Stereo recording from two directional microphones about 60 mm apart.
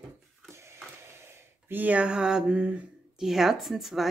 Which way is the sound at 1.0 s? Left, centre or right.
Right.